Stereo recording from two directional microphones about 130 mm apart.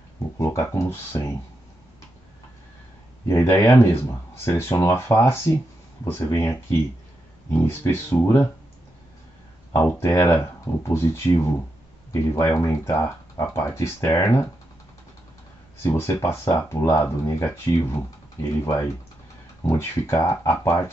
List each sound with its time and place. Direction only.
0.4 s speech: 20° left (ahead or behind)
3.3 s speech: 20° left (ahead or behind)
9.9 s speech: 20° left (ahead or behind)
15.8 s speech: 20° left (ahead or behind)
19.6 s speech: 20° left (ahead or behind)